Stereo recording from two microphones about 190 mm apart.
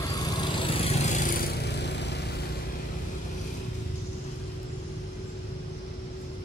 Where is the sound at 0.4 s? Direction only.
30° left (ahead or behind); by 2.2 s 65° left (ahead or behind).